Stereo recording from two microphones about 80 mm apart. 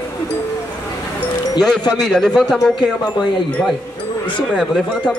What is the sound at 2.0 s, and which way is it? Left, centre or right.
Speech, centre.